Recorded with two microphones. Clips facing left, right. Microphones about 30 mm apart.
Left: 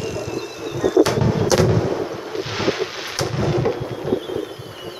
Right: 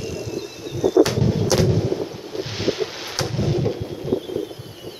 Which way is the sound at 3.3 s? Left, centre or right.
Left.